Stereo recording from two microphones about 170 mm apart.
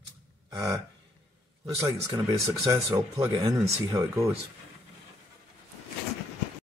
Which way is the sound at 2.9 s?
20° right (ahead or behind).